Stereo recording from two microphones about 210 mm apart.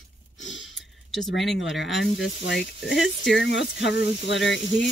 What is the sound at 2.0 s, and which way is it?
Speech, 55° left (ahead or behind).